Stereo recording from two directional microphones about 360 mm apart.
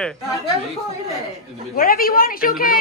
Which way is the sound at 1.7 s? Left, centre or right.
Left.